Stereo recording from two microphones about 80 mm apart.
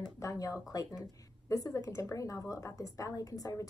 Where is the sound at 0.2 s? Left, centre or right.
Left.